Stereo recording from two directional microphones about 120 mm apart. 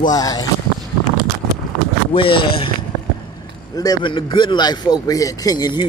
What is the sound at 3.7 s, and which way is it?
A man's voice, 35° left (ahead or behind).